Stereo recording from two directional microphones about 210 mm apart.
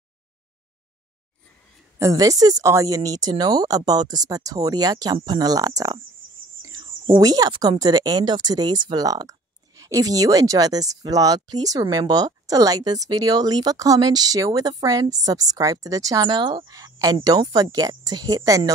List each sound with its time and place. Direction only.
2.0 s speech: 15° right (ahead or behind)
7.1 s speech: 15° right (ahead or behind)